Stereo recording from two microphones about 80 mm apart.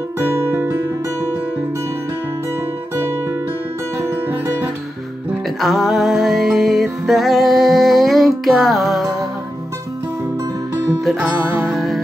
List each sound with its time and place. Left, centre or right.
0.3 s music: right
5.6 s music: centre
11.1 s music: centre